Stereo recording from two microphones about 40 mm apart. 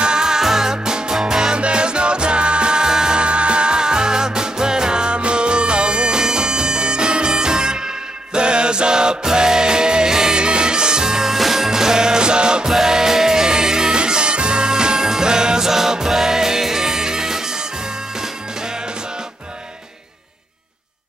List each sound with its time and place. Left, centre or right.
0.0 s music: centre